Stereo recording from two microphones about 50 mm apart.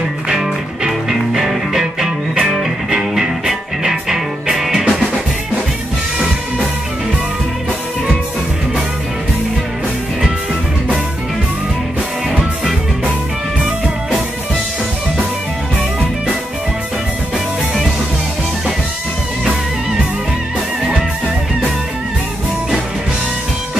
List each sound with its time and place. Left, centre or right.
0.3 s music: centre